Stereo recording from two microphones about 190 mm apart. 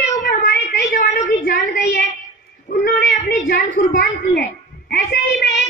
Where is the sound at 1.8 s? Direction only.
60° left (ahead or behind).